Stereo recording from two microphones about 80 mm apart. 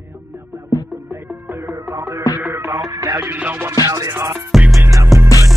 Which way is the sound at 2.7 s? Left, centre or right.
Right.